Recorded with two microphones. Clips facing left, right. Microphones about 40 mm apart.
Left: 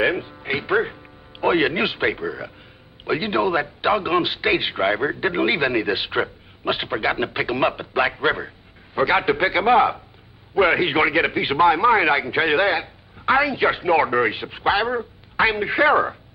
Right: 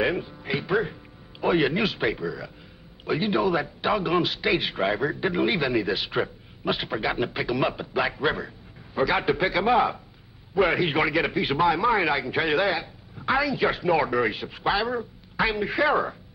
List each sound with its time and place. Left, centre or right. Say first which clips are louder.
0.0 s a man's voice: left 4 dB; left